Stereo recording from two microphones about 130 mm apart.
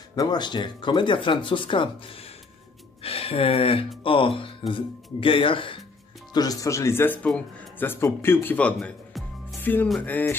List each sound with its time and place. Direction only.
0.1 s speech: 35° left (ahead or behind)
6.3 s speech: 30° left (ahead or behind); by 9.6 s centre (ahead or behind)
9.6 s music: 15° left (ahead or behind)